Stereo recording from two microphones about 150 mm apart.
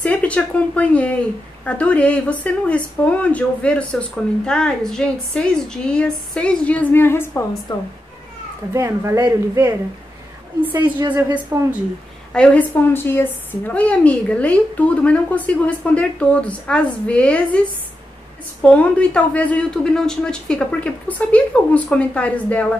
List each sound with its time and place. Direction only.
0.0 s a woman's voice: 10° left (ahead or behind)
8.7 s speech: 20° right (ahead or behind)
10.8 s speech: 30° right (ahead or behind)
12.4 s a woman's voice: 10° left (ahead or behind)
18.6 s a woman's voice: 10° left (ahead or behind)